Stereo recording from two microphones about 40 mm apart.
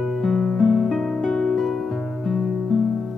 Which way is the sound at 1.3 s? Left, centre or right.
Centre.